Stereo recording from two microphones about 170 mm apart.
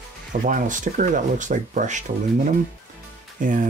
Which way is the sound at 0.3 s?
50° right (ahead or behind).